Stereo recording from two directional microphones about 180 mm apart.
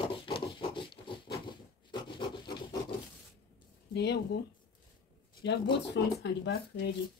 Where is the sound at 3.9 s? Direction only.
65° left (ahead or behind).